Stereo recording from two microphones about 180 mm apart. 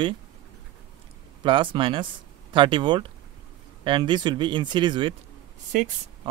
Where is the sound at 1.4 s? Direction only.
30° right (ahead or behind).